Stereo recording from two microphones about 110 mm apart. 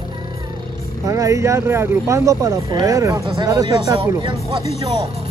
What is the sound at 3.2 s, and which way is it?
Speech, 50° right (ahead or behind).